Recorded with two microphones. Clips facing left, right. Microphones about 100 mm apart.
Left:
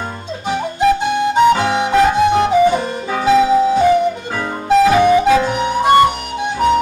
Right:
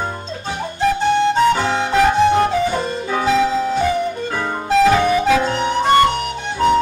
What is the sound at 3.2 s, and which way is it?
Music, 15° left (ahead or behind).